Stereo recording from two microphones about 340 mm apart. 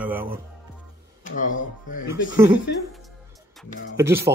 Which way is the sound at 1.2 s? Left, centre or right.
Left.